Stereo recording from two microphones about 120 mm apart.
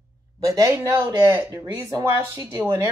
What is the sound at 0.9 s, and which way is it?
Speech, 35° right (ahead or behind).